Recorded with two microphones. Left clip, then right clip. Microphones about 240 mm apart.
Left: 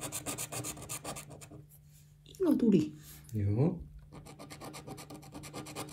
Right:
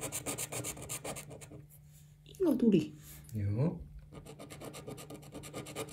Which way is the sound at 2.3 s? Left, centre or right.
Left.